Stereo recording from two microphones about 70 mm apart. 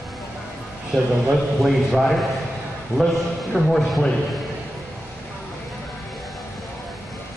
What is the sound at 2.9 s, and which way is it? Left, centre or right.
Speech, left.